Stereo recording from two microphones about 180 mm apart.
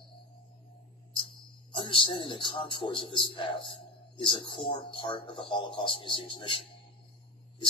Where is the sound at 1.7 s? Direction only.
30° left (ahead or behind).